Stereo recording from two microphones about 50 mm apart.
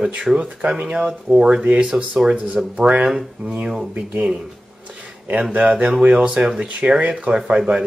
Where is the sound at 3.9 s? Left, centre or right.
Right.